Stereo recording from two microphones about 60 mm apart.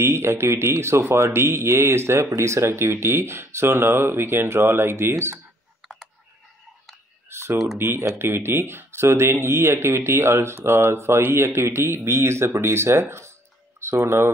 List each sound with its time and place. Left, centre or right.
0.0 s speech: right
5.8 s clicking: centre
7.2 s typing: right
7.8 s speech: right